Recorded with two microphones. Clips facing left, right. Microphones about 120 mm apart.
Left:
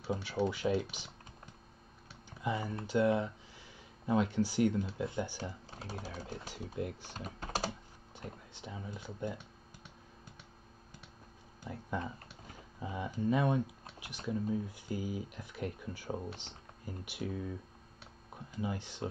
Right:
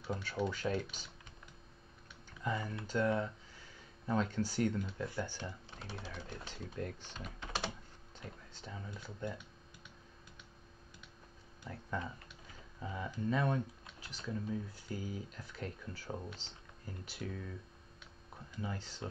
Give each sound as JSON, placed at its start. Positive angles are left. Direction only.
{"t": 0.1, "sound": "speech", "side_deg": 10}
{"t": 2.4, "sound": "speech", "side_deg": 10}
{"t": 5.7, "sound": "speech", "side_deg": 40}
{"t": 6.4, "sound": "speech", "side_deg": 10}
{"t": 7.2, "sound": "speech", "side_deg": 40}
{"t": 8.3, "sound": "speech", "side_deg": 15}
{"t": 11.6, "sound": "speech", "side_deg": 15}